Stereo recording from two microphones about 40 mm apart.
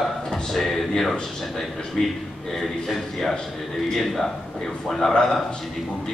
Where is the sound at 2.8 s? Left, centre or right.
Centre.